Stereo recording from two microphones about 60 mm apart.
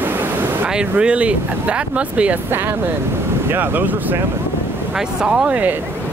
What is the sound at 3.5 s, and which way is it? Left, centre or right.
Speech, right.